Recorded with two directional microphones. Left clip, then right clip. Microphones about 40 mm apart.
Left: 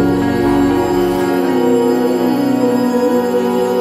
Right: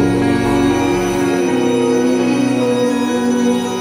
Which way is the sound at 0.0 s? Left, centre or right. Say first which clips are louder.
Left 1 dB; centre.